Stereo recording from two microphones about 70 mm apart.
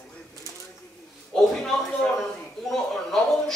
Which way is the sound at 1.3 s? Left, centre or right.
Centre.